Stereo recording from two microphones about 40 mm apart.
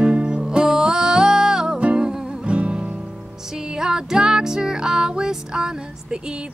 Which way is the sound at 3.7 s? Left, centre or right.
Centre.